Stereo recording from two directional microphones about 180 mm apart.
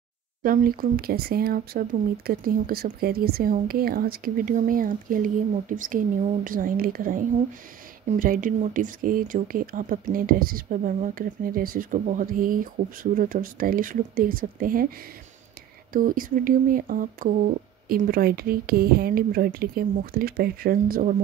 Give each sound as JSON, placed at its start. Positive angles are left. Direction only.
{"t": 0.4, "sound": "speech", "side_deg": -50}
{"t": 15.9, "sound": "speech", "side_deg": -50}